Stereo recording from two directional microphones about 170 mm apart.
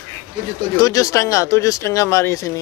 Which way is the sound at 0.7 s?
20° left (ahead or behind).